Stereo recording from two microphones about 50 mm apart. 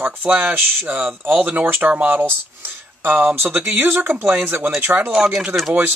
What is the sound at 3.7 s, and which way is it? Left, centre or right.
Speech, right.